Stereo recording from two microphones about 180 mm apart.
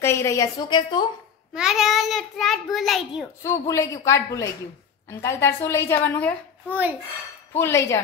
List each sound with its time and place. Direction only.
0.0 s a woman's voice: 15° left (ahead or behind)
1.5 s a child's voice: 5° right (ahead or behind)
3.4 s a woman's voice: 15° left (ahead or behind)
6.7 s a child's voice: 10° right (ahead or behind)
7.5 s a woman's voice: 15° left (ahead or behind)